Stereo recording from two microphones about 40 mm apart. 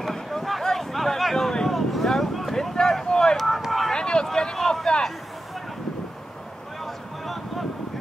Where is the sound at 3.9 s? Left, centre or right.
Centre.